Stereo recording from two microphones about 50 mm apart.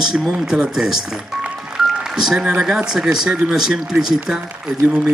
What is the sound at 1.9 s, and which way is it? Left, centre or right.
Music, centre.